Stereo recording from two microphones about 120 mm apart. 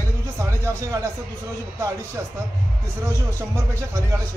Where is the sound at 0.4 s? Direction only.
25° right (ahead or behind).